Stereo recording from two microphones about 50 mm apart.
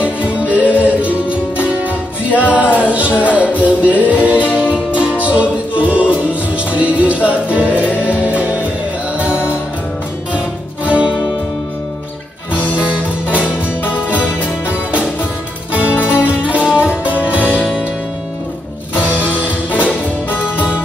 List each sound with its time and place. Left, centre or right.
0.2 s music: right
2.3 s music: right
9.3 s music: left
10.9 s music: right
12.7 s music: right
15.9 s music: left
16.3 s music: right